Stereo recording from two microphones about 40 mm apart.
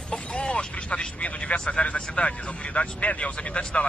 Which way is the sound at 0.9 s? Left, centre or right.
Left.